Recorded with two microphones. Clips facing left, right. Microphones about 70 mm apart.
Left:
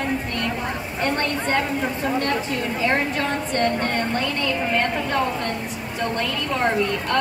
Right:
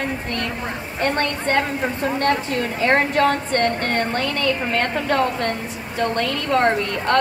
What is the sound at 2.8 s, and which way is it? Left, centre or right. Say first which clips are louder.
Speech: right 6 dB; right.